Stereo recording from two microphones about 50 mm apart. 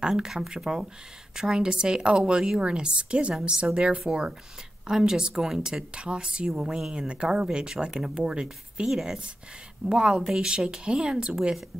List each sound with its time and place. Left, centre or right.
0.0 s speech: centre